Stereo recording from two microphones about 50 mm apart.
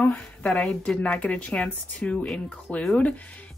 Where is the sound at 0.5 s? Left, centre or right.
Centre.